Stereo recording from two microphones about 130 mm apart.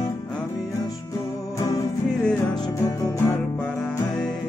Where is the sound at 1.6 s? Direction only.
30° left (ahead or behind).